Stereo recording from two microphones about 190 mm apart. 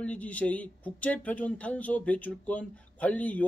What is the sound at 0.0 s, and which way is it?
Speech, 5° left (ahead or behind).